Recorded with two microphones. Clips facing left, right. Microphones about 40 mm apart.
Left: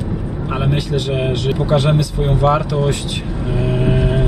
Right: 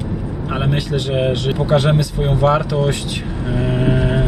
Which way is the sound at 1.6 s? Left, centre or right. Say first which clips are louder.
Right 1 dB; right.